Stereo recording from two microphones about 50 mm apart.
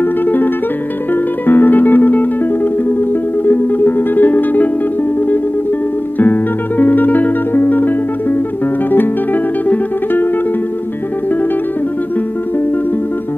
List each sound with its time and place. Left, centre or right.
1.5 s music: left
3.4 s music: left
6.1 s music: left